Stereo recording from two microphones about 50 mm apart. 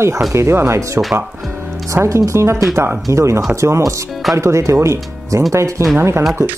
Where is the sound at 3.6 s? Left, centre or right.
Right.